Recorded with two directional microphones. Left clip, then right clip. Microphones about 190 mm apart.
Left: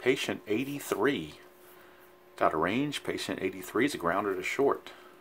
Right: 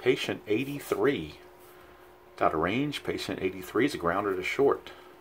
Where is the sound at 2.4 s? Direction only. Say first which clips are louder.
Right 1 dB; 15° left (ahead or behind).